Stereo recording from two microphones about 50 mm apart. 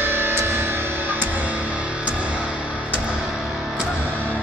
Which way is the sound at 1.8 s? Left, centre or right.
Right.